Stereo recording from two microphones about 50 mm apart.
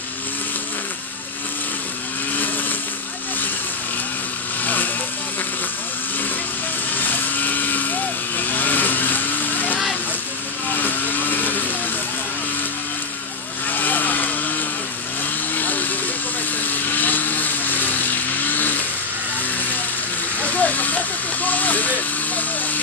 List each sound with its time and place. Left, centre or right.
7.0 s vehicle: left
13.7 s vehicle: left
15.5 s vehicle: left
20.5 s vehicle: left